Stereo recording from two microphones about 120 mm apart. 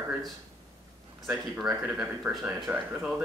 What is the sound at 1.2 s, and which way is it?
A woman's voice, centre (ahead or behind).